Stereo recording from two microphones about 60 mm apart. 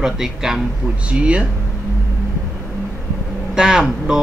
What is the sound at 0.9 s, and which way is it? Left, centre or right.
Speech, centre.